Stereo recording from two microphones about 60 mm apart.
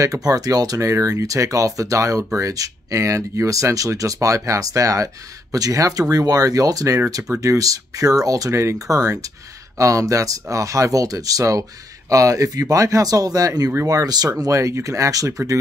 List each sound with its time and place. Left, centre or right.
0.0 s speech: right
8.5 s speech: right
14.4 s speech: right